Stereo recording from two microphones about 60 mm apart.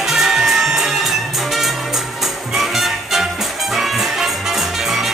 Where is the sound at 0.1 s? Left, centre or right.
Centre.